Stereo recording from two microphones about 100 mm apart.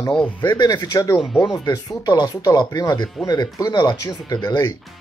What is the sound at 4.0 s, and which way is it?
Speech, 35° left (ahead or behind).